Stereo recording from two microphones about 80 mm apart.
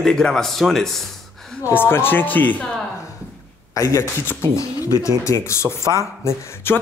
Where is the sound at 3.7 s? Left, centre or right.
Left.